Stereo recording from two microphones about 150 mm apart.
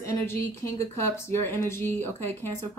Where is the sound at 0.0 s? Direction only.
15° left (ahead or behind).